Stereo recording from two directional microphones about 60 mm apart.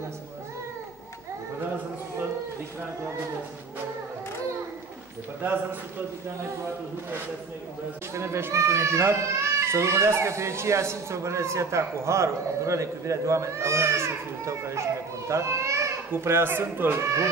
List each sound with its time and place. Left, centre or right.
5.4 s speech: right
8.1 s a child's voice: right
16.1 s speech: right